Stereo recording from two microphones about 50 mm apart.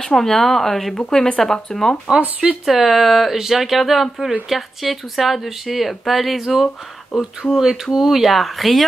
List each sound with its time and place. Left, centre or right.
0.0 s speech: centre
2.0 s speech: right
2.6 s speech: centre